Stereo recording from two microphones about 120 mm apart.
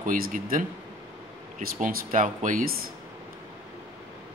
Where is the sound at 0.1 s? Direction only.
90° right.